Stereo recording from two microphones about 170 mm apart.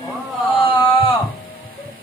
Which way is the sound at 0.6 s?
30° left (ahead or behind).